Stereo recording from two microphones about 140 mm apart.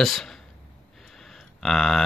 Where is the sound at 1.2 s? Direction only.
Centre (ahead or behind).